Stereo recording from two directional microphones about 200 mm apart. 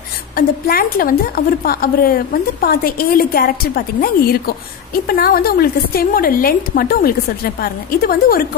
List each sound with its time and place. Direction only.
0.4 s a woman's voice: 45° left (ahead or behind)